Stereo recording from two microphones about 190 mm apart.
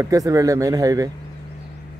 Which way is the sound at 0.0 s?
15° right (ahead or behind).